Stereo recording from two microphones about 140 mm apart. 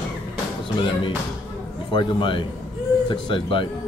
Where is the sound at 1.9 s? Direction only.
35° left (ahead or behind).